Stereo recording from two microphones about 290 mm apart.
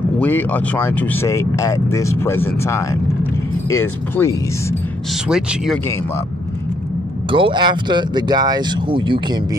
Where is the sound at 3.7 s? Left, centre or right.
Centre.